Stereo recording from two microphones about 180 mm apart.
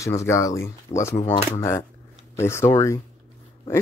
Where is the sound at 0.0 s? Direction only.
15° left (ahead or behind).